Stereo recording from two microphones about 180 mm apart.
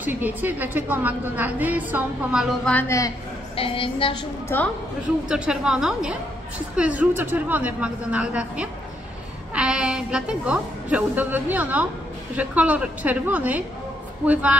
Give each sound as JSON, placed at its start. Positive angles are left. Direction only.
{"t": 0.0, "sound": "a woman's voice", "side_deg": -10}
{"t": 2.6, "sound": "a woman's voice", "side_deg": 10}
{"t": 3.5, "sound": "a woman's voice", "side_deg": 30}
{"t": 4.5, "sound": "a woman's voice", "side_deg": 15}
{"t": 5.3, "sound": "a woman's voice", "side_deg": -5}